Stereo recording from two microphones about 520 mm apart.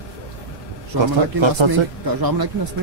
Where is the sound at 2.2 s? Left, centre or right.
Right.